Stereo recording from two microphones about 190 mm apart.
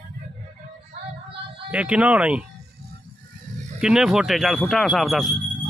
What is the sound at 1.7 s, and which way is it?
Speech, 10° right (ahead or behind).